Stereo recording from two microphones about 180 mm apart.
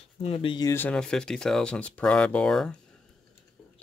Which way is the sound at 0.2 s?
35° left (ahead or behind).